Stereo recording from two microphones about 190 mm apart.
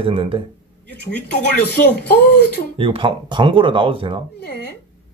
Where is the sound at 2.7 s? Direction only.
25° right (ahead or behind).